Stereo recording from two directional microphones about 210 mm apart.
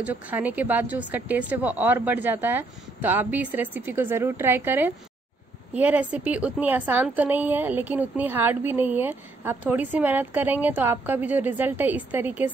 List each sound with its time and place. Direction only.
0.0 s a woman's voice: 5° right (ahead or behind)